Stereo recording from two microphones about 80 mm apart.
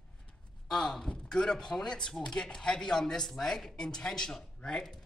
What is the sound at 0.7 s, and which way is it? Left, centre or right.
Speech, centre.